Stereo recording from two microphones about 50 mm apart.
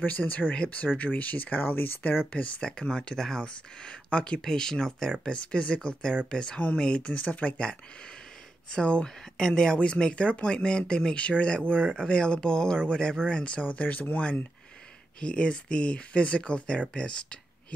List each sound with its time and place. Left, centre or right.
0.0 s speech: left
2.6 s speech: centre; by 14.2 s left
15.1 s speech: left